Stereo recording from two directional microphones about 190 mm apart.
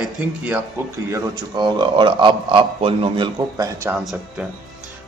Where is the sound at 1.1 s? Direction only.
20° right (ahead or behind).